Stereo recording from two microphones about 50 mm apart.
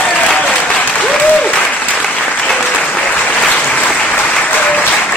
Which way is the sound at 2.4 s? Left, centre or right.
Left.